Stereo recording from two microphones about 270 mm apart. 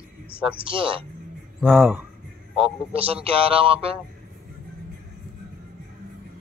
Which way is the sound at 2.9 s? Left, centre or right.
Right.